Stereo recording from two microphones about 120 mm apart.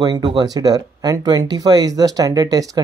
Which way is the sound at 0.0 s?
35° right (ahead or behind).